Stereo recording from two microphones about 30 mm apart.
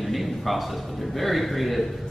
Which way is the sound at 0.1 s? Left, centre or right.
Centre.